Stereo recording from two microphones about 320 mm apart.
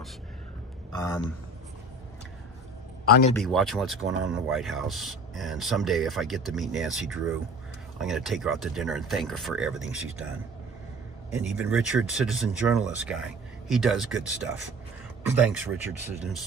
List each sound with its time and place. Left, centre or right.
0.9 s a man's voice: centre
3.1 s speech: left
3.3 s speech: centre
11.5 s speech: centre
15.3 s speech: centre